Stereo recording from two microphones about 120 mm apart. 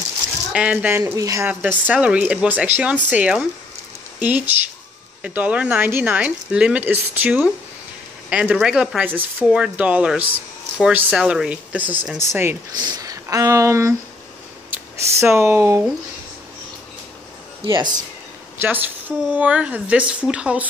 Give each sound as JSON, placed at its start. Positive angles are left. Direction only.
{"t": 0.5, "sound": "speech", "side_deg": -10}
{"t": 0.8, "sound": "speech", "side_deg": -20}
{"t": 1.5, "sound": "speech", "side_deg": -15}
{"t": 12.8, "sound": "speech", "side_deg": -30}
{"t": 17.6, "sound": "speech", "side_deg": -35}
{"t": 18.6, "sound": "speech", "side_deg": -15}